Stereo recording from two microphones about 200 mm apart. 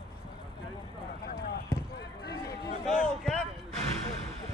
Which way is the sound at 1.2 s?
50° left (ahead or behind).